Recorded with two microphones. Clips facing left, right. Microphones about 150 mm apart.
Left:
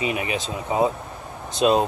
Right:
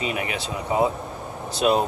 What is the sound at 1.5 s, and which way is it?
Speech, 20° left (ahead or behind).